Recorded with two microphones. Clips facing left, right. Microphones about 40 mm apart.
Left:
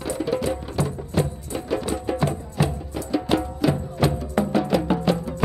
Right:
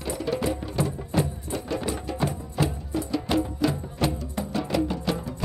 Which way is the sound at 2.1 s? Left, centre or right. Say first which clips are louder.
Left 4 dB; left.